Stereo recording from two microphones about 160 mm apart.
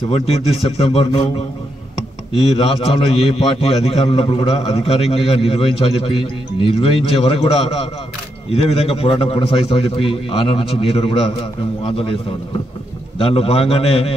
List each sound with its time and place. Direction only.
0.7 s a man's voice: 40° left (ahead or behind)
2.5 s a man's voice: 40° left (ahead or behind)